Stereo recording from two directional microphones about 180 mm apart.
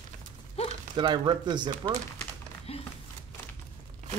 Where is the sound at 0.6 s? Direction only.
35° left (ahead or behind).